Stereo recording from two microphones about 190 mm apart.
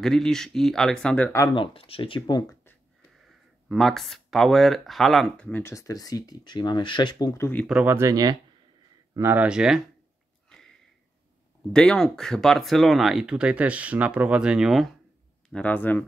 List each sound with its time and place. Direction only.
0.0 s speech: centre (ahead or behind)
1.4 s speech: 25° left (ahead or behind)
3.6 s speech: centre (ahead or behind)
7.6 s speech: 5° right (ahead or behind)
10.5 s sniff: 5° left (ahead or behind)
11.7 s speech: 5° left (ahead or behind)
15.5 s speech: 10° left (ahead or behind)